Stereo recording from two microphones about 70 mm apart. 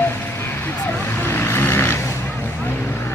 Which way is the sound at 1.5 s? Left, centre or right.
Left.